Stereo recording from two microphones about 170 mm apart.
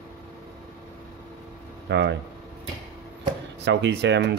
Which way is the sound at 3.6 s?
90° right.